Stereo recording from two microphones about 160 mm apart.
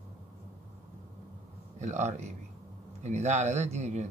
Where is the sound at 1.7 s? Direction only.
45° right (ahead or behind).